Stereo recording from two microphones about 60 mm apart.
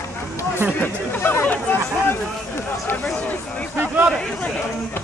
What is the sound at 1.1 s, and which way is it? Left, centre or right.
Chatter, left.